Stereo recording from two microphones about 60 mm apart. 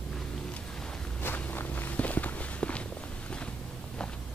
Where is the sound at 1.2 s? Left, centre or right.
Left.